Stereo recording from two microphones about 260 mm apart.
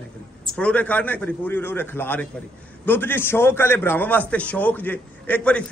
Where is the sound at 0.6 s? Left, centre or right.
Centre.